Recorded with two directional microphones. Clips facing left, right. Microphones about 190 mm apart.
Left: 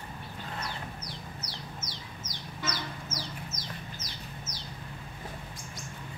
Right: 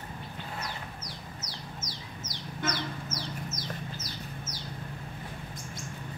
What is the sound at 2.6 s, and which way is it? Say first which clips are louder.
Chicken: right 4 dB; 50° right (ahead or behind).